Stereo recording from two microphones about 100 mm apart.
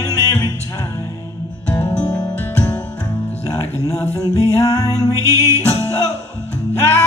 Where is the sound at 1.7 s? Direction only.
20° left (ahead or behind).